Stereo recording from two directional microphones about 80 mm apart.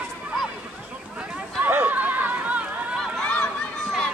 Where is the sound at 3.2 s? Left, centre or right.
Centre.